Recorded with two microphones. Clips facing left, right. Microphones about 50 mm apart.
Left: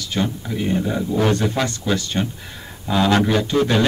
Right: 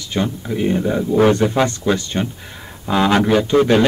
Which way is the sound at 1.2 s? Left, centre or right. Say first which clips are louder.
Right 6 dB; right.